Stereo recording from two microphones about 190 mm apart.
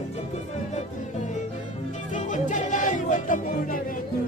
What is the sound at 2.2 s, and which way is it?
Music, 40° left (ahead or behind).